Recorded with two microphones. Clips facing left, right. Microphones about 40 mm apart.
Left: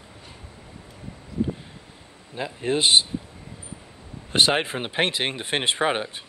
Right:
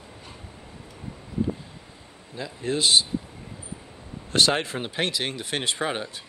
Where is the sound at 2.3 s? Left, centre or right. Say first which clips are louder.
Left 3 dB; left.